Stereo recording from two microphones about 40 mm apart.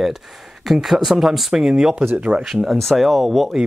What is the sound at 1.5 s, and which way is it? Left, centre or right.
Speech, centre.